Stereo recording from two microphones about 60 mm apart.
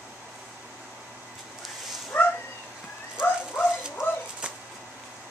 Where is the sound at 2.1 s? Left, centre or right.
Left.